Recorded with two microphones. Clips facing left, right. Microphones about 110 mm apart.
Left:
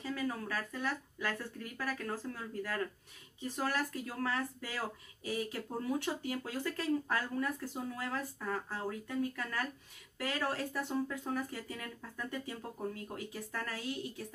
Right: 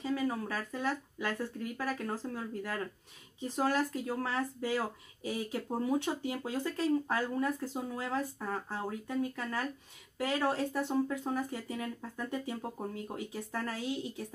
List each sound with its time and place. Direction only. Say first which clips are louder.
0.0 s speech: right 4 dB; 20° right (ahead or behind)
10.1 s speech: right 5 dB; 25° right (ahead or behind)